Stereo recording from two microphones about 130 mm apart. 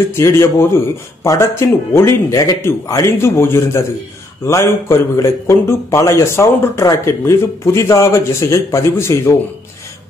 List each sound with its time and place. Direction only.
0.1 s a man's voice: 20° left (ahead or behind)